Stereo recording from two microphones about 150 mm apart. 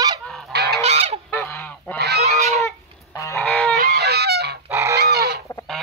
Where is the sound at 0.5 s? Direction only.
90° right.